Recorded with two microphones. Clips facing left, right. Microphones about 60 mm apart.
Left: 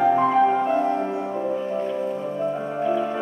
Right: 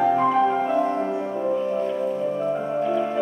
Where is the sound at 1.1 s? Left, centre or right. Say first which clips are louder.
Right 1 dB; centre.